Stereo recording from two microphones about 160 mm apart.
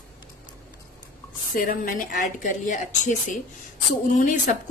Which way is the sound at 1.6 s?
60° left (ahead or behind).